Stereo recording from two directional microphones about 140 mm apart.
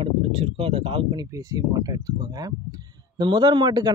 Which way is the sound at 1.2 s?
25° right (ahead or behind).